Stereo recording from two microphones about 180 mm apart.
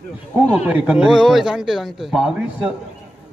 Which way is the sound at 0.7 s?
5° right (ahead or behind).